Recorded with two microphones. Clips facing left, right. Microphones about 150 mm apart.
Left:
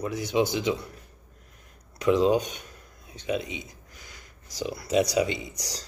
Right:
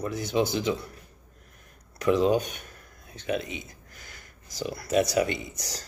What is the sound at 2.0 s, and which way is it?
Speech, 15° left (ahead or behind).